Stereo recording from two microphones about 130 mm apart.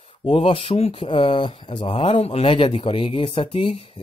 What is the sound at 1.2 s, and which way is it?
Speech, 40° left (ahead or behind).